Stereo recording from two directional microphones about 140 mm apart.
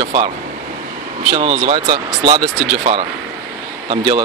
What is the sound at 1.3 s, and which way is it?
Speech, 40° right (ahead or behind).